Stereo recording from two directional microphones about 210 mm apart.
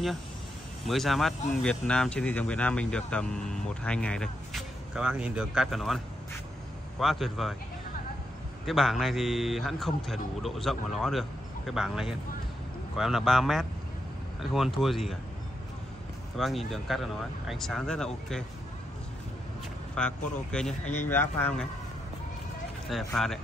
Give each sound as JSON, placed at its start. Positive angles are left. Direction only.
{"t": 0.8, "sound": "speech", "side_deg": 0}
{"t": 7.0, "sound": "speech", "side_deg": 0}
{"t": 8.6, "sound": "speech", "side_deg": 0}
{"t": 16.3, "sound": "speech", "side_deg": 0}
{"t": 20.0, "sound": "speech", "side_deg": 5}
{"t": 20.8, "sound": "speech", "side_deg": 35}
{"t": 21.1, "sound": "speech", "side_deg": 10}
{"t": 22.8, "sound": "speech", "side_deg": 0}